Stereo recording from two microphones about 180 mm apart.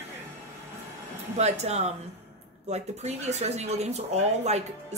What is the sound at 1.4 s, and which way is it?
Speech, 35° right (ahead or behind).